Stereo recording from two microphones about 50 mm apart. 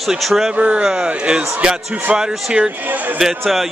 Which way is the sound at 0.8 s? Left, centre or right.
Centre.